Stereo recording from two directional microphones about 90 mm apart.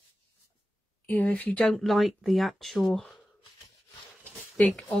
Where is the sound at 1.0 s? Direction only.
15° left (ahead or behind).